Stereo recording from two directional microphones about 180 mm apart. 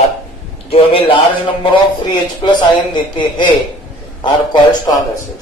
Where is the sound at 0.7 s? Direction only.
30° left (ahead or behind).